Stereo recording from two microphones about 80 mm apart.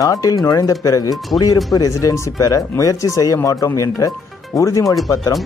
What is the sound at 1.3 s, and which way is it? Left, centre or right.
Speech, left.